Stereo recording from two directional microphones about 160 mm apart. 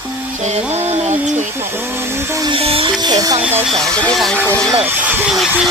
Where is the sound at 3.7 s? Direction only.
5° left (ahead or behind).